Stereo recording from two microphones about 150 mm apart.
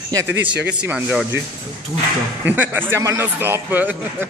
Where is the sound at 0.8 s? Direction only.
5° right (ahead or behind).